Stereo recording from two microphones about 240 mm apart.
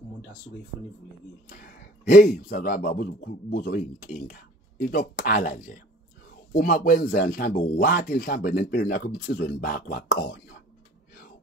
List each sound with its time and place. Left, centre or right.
1.5 s a man's voice: left